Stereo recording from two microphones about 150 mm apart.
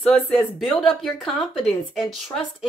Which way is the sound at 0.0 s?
5° left (ahead or behind).